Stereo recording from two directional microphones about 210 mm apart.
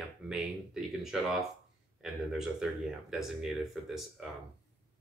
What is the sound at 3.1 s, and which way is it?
Speech, centre (ahead or behind).